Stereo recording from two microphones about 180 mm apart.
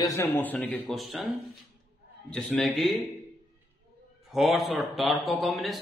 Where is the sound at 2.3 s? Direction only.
5° left (ahead or behind).